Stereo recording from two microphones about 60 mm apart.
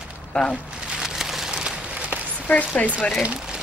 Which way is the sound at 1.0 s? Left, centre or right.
Centre.